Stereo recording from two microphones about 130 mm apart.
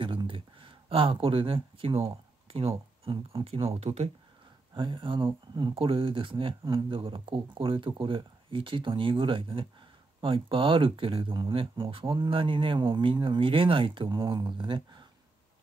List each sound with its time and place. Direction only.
0.0 s speech: 40° right (ahead or behind)
4.7 s speech: 40° right (ahead or behind)